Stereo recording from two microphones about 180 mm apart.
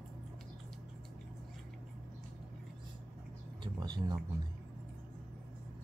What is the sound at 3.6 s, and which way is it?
Speech, 20° right (ahead or behind).